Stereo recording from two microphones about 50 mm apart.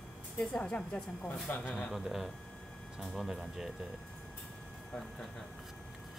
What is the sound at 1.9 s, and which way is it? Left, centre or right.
Speech, centre.